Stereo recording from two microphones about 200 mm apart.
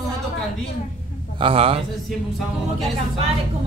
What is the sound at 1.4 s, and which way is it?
Speech, 25° right (ahead or behind).